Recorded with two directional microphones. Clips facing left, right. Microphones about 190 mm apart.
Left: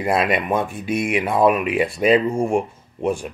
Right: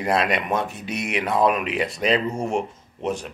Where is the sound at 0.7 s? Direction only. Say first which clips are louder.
Left 6 dB; 50° left (ahead or behind).